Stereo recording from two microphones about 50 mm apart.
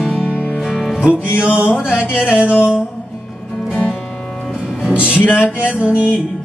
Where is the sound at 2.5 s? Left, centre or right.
Right.